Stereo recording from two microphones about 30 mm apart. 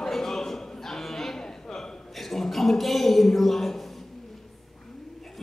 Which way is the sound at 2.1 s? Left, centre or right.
Centre.